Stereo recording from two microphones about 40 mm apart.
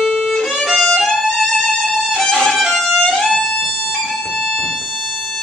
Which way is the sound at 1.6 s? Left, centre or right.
Centre.